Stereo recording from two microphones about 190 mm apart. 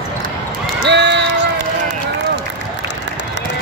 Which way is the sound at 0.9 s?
65° right (ahead or behind).